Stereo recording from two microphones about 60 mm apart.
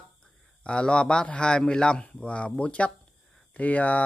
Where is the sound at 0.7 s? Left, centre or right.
Centre.